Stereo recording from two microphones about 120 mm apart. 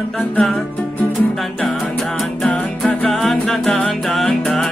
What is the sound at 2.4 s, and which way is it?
Music, 5° left (ahead or behind).